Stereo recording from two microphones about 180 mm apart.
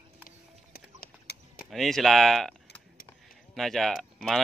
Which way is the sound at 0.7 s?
60° left (ahead or behind).